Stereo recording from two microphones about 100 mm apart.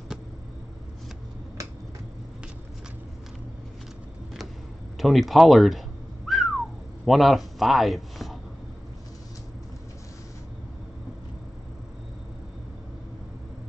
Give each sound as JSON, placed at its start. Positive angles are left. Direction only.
{"t": 1.6, "sound": "finger snapping", "side_deg": -35}
{"t": 4.9, "sound": "whistling", "side_deg": 0}
{"t": 7.1, "sound": "speech", "side_deg": 0}